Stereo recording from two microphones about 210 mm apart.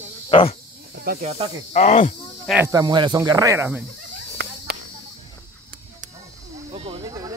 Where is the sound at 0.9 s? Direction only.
50° right (ahead or behind).